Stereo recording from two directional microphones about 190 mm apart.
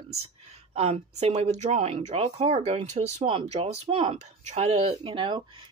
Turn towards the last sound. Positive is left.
turn(degrees=-25)  # may be behind; listen again after turning